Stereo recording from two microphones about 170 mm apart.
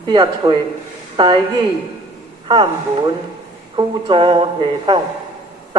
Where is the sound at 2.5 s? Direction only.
30° right (ahead or behind).